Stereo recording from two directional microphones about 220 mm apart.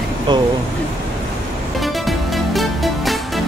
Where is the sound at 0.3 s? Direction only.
20° right (ahead or behind).